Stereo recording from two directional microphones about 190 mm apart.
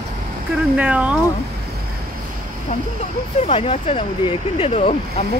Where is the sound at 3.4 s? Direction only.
30° left (ahead or behind).